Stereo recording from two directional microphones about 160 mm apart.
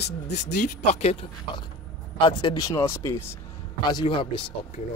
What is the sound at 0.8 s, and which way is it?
Speech, 45° left (ahead or behind).